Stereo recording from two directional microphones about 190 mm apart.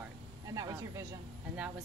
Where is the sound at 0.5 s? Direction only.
20° right (ahead or behind).